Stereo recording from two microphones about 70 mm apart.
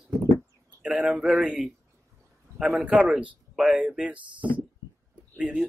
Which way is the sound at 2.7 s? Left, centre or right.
Centre.